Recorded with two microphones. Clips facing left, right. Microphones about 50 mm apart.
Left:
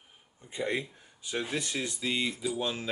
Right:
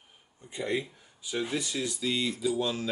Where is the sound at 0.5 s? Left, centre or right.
Centre.